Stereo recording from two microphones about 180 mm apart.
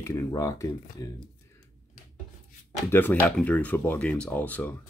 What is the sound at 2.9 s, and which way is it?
Speech, 10° left (ahead or behind).